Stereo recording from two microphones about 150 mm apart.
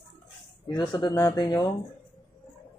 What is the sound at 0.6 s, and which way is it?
Speech, 30° left (ahead or behind).